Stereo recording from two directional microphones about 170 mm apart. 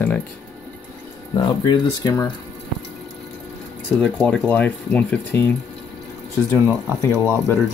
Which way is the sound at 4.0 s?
5° left (ahead or behind).